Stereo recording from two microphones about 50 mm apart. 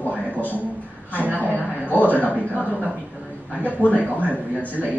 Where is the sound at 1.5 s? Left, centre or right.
Right.